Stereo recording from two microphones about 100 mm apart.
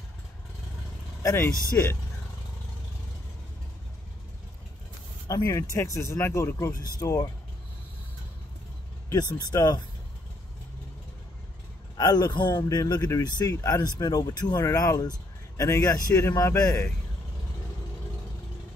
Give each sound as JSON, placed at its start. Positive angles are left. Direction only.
{"t": 1.2, "sound": "speech", "side_deg": 25}
{"t": 5.3, "sound": "speech", "side_deg": 40}
{"t": 9.1, "sound": "speech", "side_deg": 40}
{"t": 12.0, "sound": "a man's voice", "side_deg": 40}
{"t": 13.5, "sound": "speech", "side_deg": 35}